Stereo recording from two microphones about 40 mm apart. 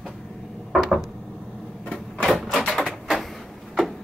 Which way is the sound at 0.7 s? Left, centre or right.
Centre.